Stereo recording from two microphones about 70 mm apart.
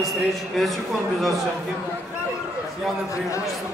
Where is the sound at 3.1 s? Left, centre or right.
Left.